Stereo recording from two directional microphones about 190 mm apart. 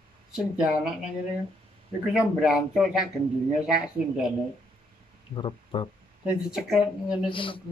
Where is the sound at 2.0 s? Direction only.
5° right (ahead or behind).